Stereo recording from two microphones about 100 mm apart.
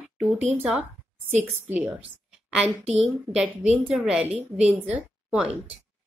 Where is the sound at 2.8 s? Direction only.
90° right.